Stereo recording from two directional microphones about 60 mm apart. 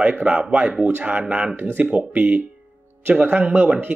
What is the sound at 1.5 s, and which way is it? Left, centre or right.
Speech, right.